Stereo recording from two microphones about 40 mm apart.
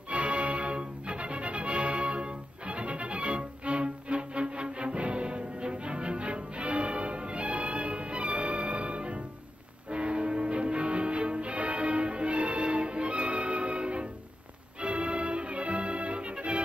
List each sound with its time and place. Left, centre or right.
0.1 s music: right